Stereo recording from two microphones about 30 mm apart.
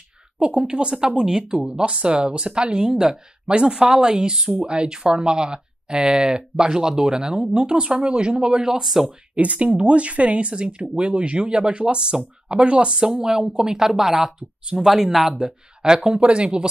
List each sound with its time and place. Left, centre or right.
0.4 s speech: right
2.8 s speech: centre
3.4 s speech: right
8.5 s speech: right
8.8 s speech: centre
9.3 s speech: right
13.0 s speech: right
15.3 s speech: right
16.0 s speech: right